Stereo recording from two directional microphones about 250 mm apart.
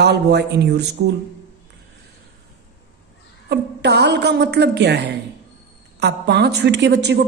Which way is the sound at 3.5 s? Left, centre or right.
Right.